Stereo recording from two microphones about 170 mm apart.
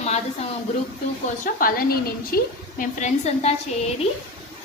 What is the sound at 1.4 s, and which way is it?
A woman's voice, 55° left (ahead or behind).